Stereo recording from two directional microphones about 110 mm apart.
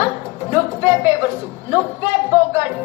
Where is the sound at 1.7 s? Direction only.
20° right (ahead or behind).